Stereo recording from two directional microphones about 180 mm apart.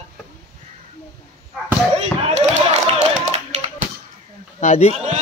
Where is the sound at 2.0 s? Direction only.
40° right (ahead or behind).